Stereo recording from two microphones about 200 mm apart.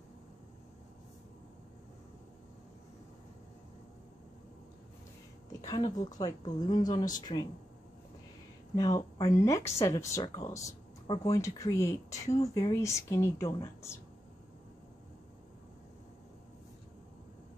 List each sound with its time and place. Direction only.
5.6 s speech: 20° left (ahead or behind)
8.7 s speech: 20° left (ahead or behind)